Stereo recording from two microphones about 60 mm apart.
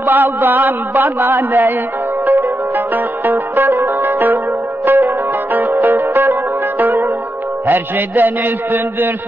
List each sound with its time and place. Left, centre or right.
0.0 s a man's voice: right
2.2 s zither: right
4.8 s music: right
7.6 s a man's voice: right